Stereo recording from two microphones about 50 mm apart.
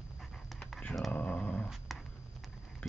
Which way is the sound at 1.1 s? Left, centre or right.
Left.